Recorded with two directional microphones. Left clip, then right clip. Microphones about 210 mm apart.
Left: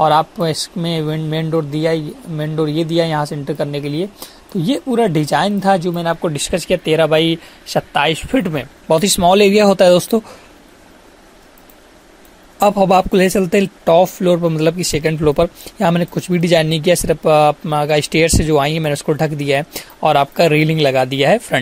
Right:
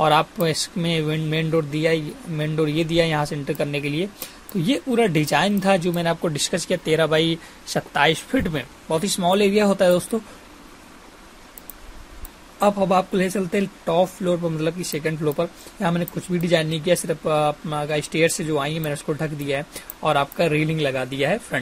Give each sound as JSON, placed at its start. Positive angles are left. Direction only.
{"t": 0.0, "sound": "speech", "side_deg": 15}
{"t": 8.8, "sound": "speech", "side_deg": 45}
{"t": 12.5, "sound": "speech", "side_deg": 45}